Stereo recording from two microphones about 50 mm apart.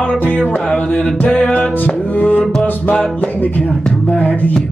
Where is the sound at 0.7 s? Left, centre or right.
Left.